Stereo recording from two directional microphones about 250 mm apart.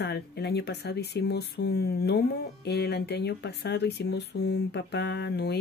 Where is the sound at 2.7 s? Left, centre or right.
Left.